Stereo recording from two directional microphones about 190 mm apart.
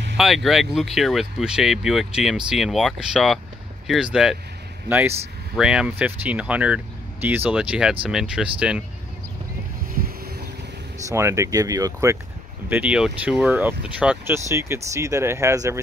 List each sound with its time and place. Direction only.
0.2 s speech: centre (ahead or behind)
10.0 s boat: 50° right (ahead or behind)
11.1 s speech: 15° right (ahead or behind)